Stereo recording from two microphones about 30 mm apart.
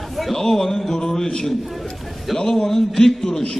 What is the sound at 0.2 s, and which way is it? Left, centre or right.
Speech, centre.